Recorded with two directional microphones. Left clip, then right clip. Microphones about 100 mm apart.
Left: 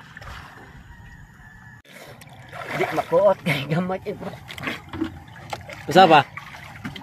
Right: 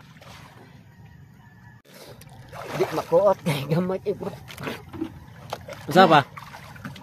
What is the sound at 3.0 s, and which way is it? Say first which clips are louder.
Speech: left 1 dB; 15° right (ahead or behind).